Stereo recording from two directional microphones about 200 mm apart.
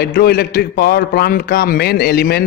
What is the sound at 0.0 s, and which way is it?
A man's voice, 50° left (ahead or behind).